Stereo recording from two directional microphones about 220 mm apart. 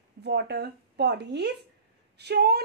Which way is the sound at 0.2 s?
50° right (ahead or behind).